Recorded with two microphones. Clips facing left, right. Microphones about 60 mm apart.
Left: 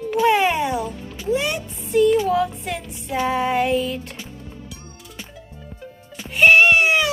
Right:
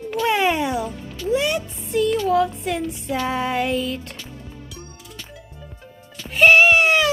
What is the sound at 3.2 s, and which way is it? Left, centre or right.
Speech, centre.